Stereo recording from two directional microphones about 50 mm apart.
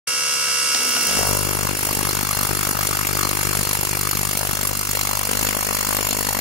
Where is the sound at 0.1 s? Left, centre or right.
Centre.